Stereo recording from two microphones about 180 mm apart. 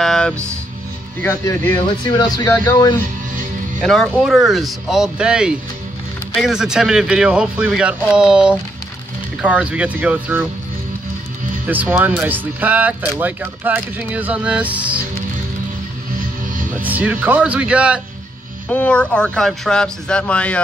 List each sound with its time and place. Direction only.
0.0 s music: 5° left (ahead or behind)
1.2 s speech: 15° left (ahead or behind)
3.8 s speech: centre (ahead or behind)
11.6 s speech: 10° right (ahead or behind)
16.7 s speech: 10° right (ahead or behind)
18.7 s speech: 5° left (ahead or behind)